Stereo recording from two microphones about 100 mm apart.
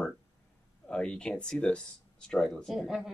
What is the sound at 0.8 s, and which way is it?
Speech, 10° left (ahead or behind).